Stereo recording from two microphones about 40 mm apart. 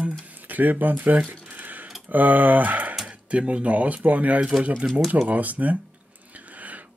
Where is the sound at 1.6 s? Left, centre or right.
Right.